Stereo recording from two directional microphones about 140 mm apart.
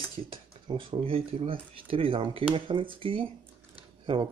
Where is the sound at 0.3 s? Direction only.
40° right (ahead or behind).